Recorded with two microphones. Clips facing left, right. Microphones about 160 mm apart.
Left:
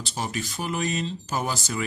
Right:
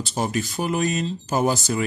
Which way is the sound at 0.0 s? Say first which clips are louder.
Right 6 dB; 45° right (ahead or behind).